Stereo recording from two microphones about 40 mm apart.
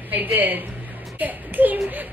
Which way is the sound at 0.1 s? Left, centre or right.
Right.